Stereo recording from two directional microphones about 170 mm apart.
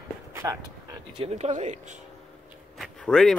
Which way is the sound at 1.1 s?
40° right (ahead or behind).